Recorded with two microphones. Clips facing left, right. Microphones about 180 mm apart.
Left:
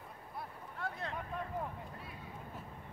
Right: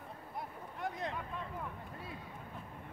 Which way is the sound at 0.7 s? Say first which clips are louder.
Right 2 dB; 15° right (ahead or behind).